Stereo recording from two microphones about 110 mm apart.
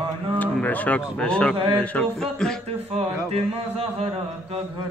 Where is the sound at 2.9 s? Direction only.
70° right (ahead or behind).